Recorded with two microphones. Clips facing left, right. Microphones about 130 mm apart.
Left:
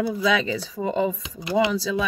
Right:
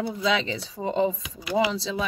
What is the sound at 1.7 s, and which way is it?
Speech, 25° right (ahead or behind).